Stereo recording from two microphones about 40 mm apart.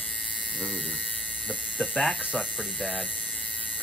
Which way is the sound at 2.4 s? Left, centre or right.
Centre.